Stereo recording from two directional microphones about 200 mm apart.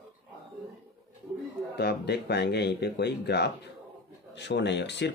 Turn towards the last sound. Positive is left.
turn(degrees=60)  # may be behind; listen again after turning